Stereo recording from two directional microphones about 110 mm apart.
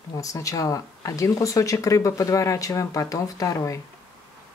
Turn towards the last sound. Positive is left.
turn(degrees=30)  # may be behind; listen again after turning